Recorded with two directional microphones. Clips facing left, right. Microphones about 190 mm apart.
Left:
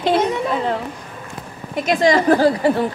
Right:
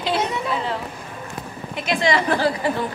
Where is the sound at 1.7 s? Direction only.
45° left (ahead or behind).